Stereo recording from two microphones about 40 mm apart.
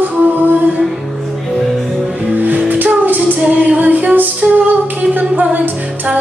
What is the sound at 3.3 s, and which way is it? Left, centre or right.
Female singing, right.